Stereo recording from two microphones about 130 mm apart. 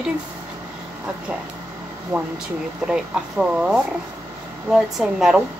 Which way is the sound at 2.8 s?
5° right (ahead or behind).